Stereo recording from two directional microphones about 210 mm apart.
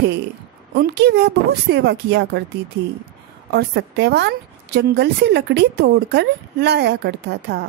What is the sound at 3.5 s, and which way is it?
A woman's voice, 55° right (ahead or behind).